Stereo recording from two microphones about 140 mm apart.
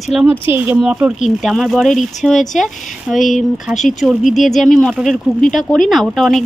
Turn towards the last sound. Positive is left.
turn(degrees=0)  # may be behind; listen again after turning